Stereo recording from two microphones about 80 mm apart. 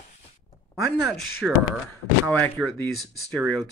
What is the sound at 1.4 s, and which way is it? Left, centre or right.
Speech, centre.